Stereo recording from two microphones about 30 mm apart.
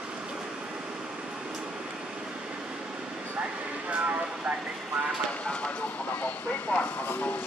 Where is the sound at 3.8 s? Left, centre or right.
Right.